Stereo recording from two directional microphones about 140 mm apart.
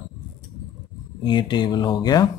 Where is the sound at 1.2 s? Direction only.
35° left (ahead or behind).